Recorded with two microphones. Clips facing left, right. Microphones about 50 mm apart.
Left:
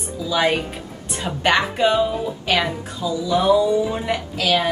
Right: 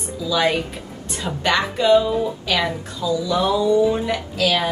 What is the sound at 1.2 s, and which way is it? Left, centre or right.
Speech, left.